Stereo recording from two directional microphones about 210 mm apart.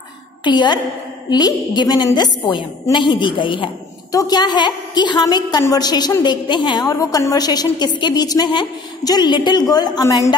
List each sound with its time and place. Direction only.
0.4 s a woman's voice: 20° left (ahead or behind)